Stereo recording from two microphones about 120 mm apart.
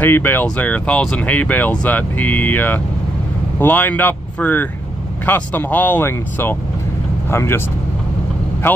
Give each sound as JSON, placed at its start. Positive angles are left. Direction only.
{"t": 0.0, "sound": "speech", "side_deg": 15}